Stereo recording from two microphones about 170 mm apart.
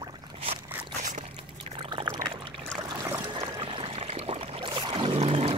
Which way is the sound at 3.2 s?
25° right (ahead or behind).